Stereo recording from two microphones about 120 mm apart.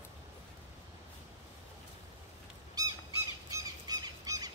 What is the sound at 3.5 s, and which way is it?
Squawk, 30° right (ahead or behind).